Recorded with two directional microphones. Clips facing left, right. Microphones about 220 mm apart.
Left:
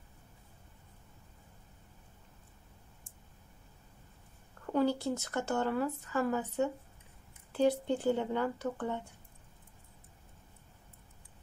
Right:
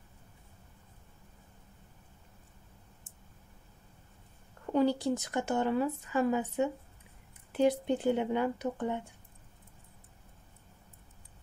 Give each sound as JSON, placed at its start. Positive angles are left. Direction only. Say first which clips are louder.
{"t": 4.7, "sound": "speech", "louder": "right 2 dB", "side_deg": -15}